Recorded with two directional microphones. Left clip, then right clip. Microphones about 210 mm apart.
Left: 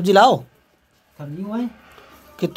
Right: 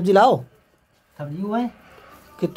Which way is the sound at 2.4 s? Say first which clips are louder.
Left 1 dB; centre (ahead or behind).